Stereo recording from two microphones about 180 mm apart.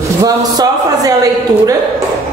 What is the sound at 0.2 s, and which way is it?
Speech, 20° right (ahead or behind).